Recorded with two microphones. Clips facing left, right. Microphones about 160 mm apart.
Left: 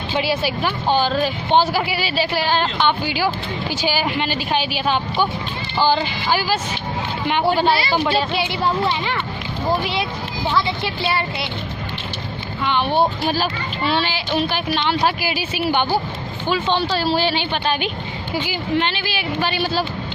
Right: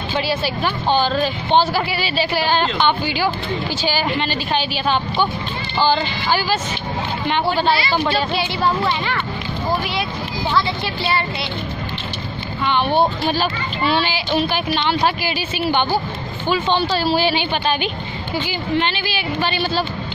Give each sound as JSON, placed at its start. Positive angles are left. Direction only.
{"t": 0.1, "sound": "speech", "side_deg": 15}
{"t": 10.5, "sound": "speech", "side_deg": 20}
{"t": 12.6, "sound": "speech", "side_deg": 0}